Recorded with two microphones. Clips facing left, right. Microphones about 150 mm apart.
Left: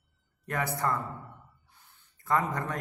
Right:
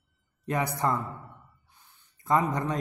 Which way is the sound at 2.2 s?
20° right (ahead or behind).